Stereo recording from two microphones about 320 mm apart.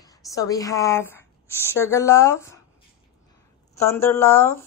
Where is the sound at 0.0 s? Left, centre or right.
Centre.